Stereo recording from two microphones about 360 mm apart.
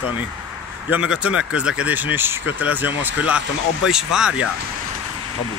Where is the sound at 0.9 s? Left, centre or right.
Centre.